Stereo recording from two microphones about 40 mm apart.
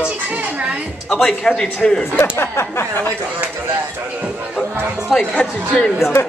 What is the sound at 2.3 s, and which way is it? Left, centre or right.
Speech, left.